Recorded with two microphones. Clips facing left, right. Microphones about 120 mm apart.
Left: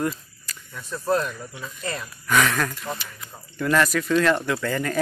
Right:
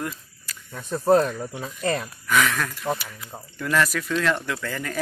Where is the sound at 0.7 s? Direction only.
45° right (ahead or behind).